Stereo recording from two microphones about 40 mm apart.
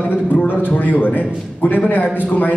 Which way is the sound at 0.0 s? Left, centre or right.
Left.